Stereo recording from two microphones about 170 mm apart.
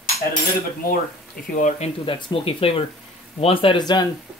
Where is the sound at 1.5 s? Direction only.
45° left (ahead or behind).